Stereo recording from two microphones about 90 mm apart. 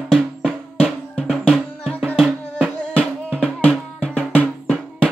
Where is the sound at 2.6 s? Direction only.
15° right (ahead or behind).